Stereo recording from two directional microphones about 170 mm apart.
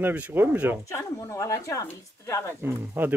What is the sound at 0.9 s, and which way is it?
Speech, 15° left (ahead or behind).